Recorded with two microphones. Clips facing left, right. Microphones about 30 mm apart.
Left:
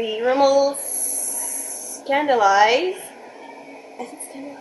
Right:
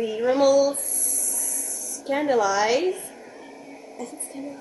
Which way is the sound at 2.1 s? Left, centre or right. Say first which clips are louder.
Left 5 dB; left.